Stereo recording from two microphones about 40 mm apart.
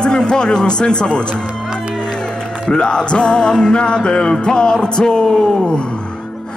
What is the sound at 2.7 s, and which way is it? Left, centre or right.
Music, left.